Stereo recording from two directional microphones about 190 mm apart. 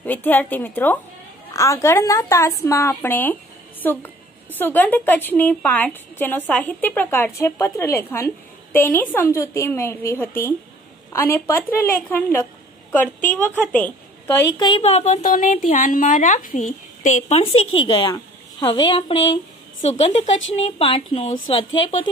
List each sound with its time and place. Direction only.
0.0 s a woman's voice: 10° left (ahead or behind)
13.6 s a woman's voice: 10° left (ahead or behind)
14.6 s a woman's voice: 30° left (ahead or behind)